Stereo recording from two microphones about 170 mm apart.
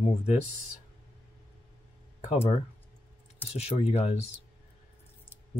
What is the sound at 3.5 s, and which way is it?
Speech, 40° left (ahead or behind).